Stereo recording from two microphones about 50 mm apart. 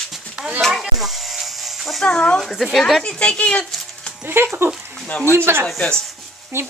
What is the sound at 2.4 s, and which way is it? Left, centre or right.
Speech, centre.